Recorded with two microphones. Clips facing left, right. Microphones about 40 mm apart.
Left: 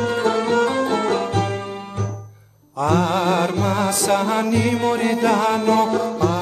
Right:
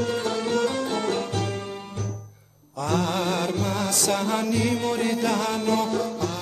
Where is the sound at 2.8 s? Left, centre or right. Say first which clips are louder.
Left 6 dB; left.